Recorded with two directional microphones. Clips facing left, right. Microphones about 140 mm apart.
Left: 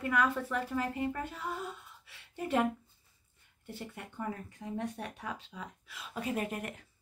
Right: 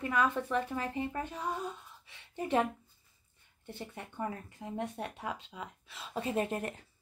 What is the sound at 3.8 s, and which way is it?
A woman's voice, 25° right (ahead or behind).